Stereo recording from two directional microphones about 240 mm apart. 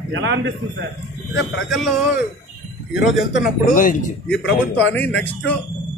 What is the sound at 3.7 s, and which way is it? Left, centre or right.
Speech, left.